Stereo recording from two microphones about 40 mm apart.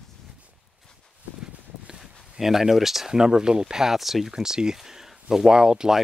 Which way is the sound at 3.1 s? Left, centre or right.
Centre.